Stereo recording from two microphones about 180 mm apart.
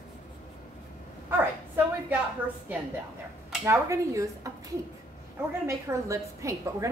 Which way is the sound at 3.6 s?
15° right (ahead or behind).